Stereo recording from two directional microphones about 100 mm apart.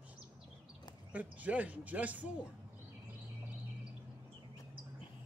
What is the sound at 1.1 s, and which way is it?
Speech, 15° right (ahead or behind).